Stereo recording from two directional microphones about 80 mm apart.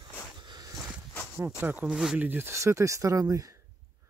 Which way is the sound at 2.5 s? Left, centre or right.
Right.